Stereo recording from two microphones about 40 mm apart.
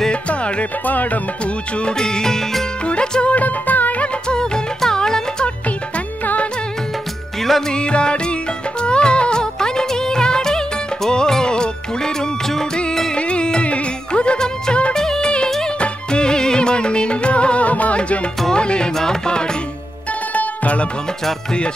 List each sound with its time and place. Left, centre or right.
0.1 s music: left
0.8 s music: left
1.4 s music: left
2.0 s music: centre
2.8 s music: left
3.3 s music: left
4.0 s music: left
6.2 s music: left
7.3 s music: centre
7.7 s music: left
15.0 s music of bollywood: centre
15.8 s music: left
20.1 s music: left
21.5 s music: left